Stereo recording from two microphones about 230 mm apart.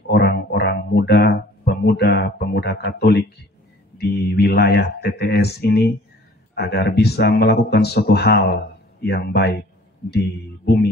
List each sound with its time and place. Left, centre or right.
0.1 s a man's voice: left